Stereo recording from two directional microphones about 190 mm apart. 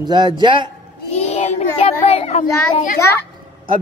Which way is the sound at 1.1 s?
35° left (ahead or behind).